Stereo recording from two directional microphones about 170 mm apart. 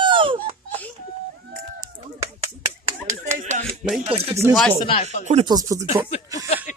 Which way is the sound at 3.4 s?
40° right (ahead or behind).